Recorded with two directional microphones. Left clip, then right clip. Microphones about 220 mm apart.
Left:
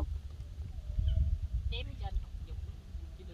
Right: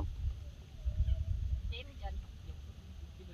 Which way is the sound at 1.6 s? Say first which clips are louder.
Left 3 dB; 50° left (ahead or behind).